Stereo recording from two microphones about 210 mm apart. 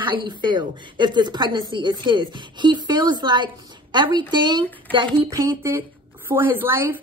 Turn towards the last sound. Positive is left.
turn(degrees=-10)  # may be behind; listen again after turning